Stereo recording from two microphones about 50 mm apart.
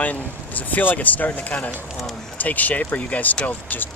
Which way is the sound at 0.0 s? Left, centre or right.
Left.